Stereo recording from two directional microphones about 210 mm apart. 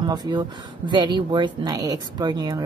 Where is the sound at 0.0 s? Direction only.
20° right (ahead or behind).